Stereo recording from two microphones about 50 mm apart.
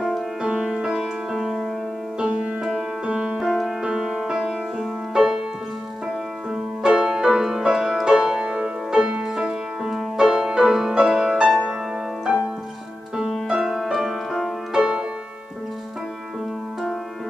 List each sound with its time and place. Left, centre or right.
0.4 s music: centre
1.4 s keyboard: centre
2.1 s music: centre
6.5 s music: centre
13.1 s music: centre
13.9 s music: centre
14.7 s music: centre